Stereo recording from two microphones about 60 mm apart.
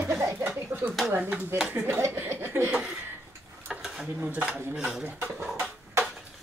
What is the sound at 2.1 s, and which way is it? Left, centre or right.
Chuckle, right.